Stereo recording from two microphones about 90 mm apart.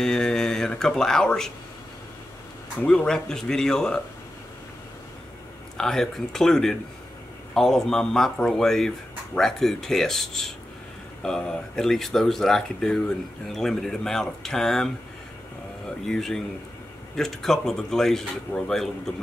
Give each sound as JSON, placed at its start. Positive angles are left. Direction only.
{"t": 0.0, "sound": "speech", "side_deg": 5}
{"t": 2.8, "sound": "speech", "side_deg": 15}
{"t": 3.1, "sound": "speech", "side_deg": 5}
{"t": 5.8, "sound": "speech", "side_deg": 5}
{"t": 16.1, "sound": "speech", "side_deg": 5}